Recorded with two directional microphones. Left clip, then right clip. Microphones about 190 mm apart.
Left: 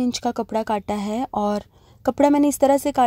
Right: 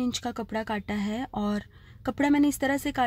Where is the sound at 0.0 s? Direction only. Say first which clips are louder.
Left 8 dB; 25° left (ahead or behind).